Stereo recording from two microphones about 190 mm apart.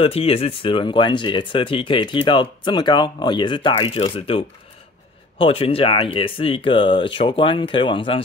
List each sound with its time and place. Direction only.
0.0 s speech: 30° left (ahead or behind)